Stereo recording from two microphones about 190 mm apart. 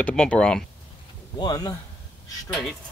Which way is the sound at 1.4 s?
20° left (ahead or behind).